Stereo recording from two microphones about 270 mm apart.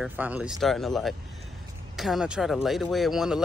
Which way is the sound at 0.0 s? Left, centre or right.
Centre.